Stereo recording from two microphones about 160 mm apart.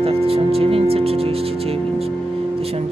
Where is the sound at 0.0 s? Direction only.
35° right (ahead or behind).